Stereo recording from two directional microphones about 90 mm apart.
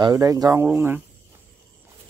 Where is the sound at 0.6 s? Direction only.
20° right (ahead or behind).